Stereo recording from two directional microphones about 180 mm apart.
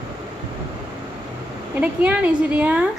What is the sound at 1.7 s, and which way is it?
A woman's voice, 10° right (ahead or behind).